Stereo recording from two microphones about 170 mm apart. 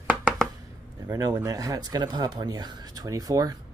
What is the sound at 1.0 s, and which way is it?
Speech, 20° right (ahead or behind).